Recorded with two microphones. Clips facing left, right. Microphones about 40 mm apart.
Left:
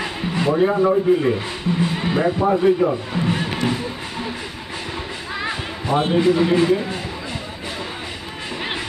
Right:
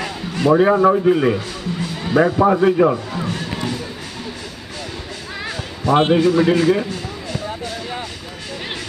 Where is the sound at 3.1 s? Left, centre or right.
Left.